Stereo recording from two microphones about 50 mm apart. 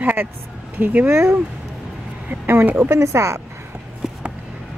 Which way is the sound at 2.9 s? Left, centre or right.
Right.